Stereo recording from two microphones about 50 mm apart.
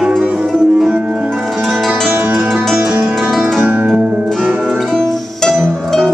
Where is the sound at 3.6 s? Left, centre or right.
Right.